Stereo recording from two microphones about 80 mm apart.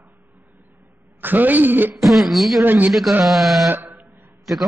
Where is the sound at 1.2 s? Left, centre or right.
Right.